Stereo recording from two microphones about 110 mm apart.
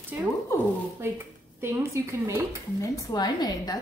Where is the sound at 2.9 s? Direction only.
35° left (ahead or behind).